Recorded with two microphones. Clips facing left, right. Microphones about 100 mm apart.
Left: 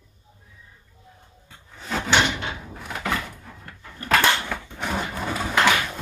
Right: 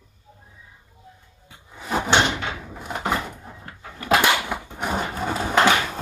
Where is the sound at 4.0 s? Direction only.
15° right (ahead or behind).